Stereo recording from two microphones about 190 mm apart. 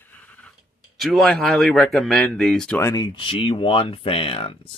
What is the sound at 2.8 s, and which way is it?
Speech, 15° left (ahead or behind).